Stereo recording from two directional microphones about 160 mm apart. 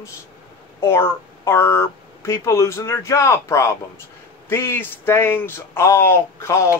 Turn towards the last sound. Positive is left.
turn(degrees=15)  # may be behind; listen again after turning